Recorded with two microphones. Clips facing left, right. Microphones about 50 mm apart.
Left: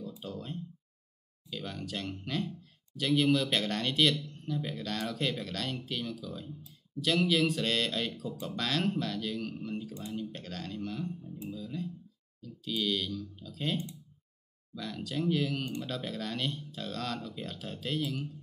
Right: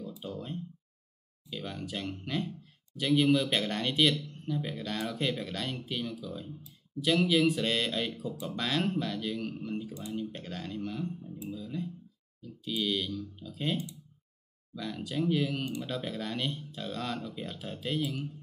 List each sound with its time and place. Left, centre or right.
0.2 s speech: centre
14.8 s speech: centre